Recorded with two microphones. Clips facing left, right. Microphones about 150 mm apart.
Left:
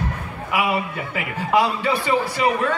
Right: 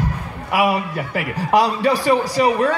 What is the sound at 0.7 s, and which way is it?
A man's voice, 40° right (ahead or behind).